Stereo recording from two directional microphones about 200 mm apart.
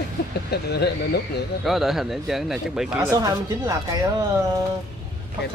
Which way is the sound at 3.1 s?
20° right (ahead or behind).